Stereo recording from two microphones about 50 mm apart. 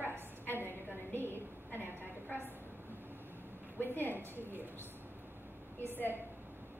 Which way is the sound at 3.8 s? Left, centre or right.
Left.